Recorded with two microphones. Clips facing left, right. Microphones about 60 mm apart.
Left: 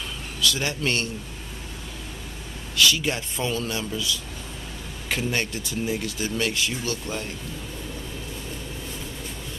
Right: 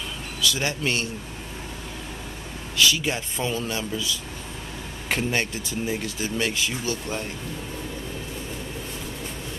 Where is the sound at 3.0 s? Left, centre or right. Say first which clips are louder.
Even; centre.